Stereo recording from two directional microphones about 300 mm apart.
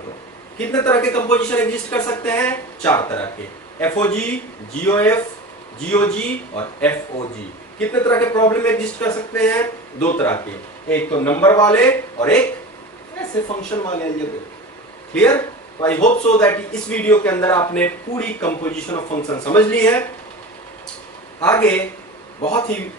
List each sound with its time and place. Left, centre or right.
0.6 s a man's voice: centre
7.8 s a man's voice: centre
13.5 s a man's voice: centre
15.1 s speech: centre
16.0 s a man's voice: left
16.3 s a man's voice: centre
21.4 s a man's voice: centre